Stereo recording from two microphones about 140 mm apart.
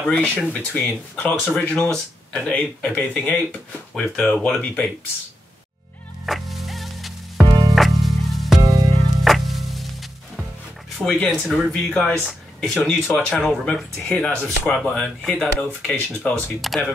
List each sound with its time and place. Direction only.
0.0 s speech: 10° left (ahead or behind)
6.2 s music: centre (ahead or behind)
7.4 s music: 30° right (ahead or behind)
7.7 s music: centre (ahead or behind)
8.5 s music: 25° right (ahead or behind)
9.2 s music: centre (ahead or behind)
11.1 s speech: 5° left (ahead or behind)
16.6 s speech: centre (ahead or behind)